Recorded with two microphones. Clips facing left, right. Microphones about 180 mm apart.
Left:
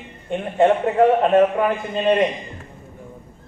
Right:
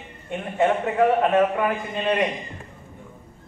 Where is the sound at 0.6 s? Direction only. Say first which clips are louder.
Left 4 dB; 30° left (ahead or behind).